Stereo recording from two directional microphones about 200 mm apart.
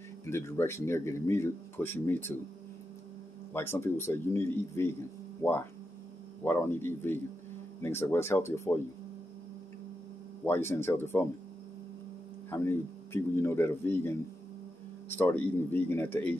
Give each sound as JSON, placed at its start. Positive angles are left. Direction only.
{"t": 0.2, "sound": "speech", "side_deg": 15}
{"t": 3.5, "sound": "speech", "side_deg": 10}
{"t": 10.4, "sound": "speech", "side_deg": 10}
{"t": 12.4, "sound": "speech", "side_deg": 10}